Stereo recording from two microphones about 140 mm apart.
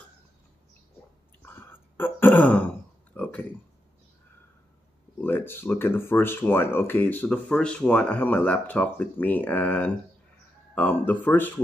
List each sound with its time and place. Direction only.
1.4 s throat clearing: 15° left (ahead or behind)
3.1 s a sound: 10° left (ahead or behind)
5.2 s speech: 15° left (ahead or behind)